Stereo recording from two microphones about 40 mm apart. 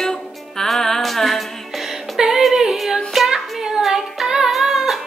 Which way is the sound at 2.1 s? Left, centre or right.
Centre.